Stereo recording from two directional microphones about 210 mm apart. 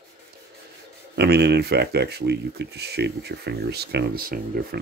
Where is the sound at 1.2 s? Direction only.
50° right (ahead or behind).